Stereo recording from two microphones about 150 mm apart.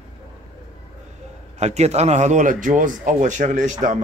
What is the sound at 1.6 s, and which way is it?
A man's voice, 50° right (ahead or behind).